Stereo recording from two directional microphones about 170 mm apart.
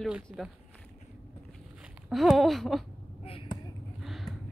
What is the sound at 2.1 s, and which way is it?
Speech, centre (ahead or behind).